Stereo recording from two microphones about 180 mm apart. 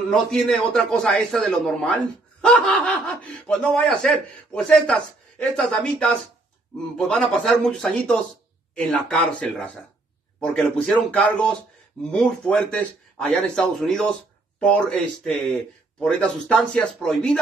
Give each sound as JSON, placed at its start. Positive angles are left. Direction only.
{"t": 0.1, "sound": "speech", "side_deg": 5}